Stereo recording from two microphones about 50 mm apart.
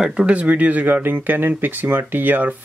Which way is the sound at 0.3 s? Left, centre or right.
Right.